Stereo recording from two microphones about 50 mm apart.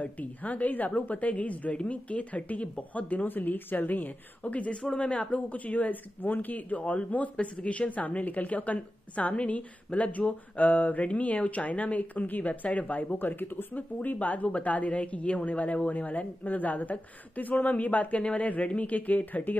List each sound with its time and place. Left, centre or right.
0.0 s a woman's voice: left